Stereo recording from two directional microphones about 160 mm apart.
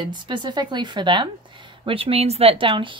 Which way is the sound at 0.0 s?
30° right (ahead or behind).